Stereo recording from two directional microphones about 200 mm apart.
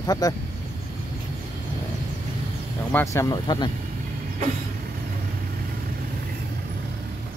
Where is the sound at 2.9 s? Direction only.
15° left (ahead or behind).